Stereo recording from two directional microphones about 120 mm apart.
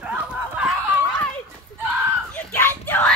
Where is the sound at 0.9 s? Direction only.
10° left (ahead or behind).